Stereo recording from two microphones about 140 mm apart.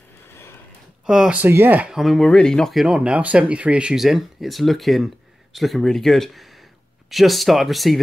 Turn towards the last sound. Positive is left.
turn(degrees=0)  # may be behind; listen again after turning